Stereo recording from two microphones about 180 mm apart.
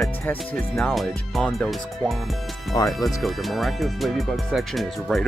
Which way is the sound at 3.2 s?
Centre (ahead or behind).